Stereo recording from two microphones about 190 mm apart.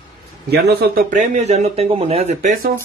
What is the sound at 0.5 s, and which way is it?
Speech, 55° right (ahead or behind).